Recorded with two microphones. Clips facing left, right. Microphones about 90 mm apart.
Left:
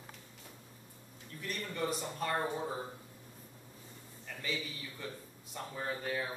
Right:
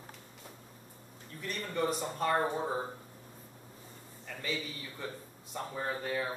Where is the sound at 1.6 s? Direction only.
30° right (ahead or behind).